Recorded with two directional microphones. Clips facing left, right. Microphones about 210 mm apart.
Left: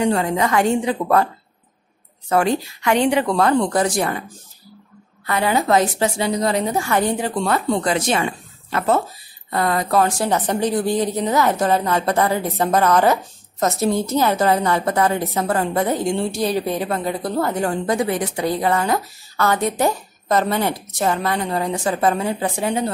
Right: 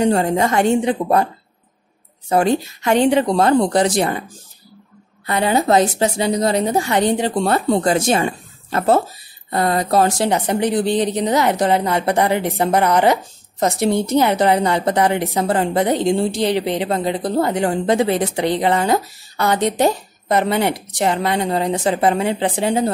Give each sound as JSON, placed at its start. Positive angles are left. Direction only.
{"t": 0.0, "sound": "a woman's voice", "side_deg": -40}
{"t": 2.9, "sound": "a woman's voice", "side_deg": -40}
{"t": 3.2, "sound": "a woman's voice", "side_deg": -25}
{"t": 5.2, "sound": "a woman's voice", "side_deg": -25}
{"t": 8.2, "sound": "a sound", "side_deg": -35}
{"t": 9.5, "sound": "a woman's voice", "side_deg": -25}
{"t": 10.4, "sound": "a woman's voice", "side_deg": -10}